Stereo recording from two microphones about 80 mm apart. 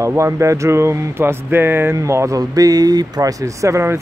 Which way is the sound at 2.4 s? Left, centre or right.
Right.